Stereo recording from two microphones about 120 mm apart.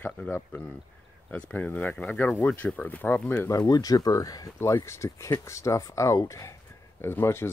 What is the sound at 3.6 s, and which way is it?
Speech, 30° left (ahead or behind).